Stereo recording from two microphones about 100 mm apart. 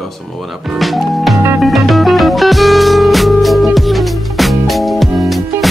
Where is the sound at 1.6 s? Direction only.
Centre (ahead or behind).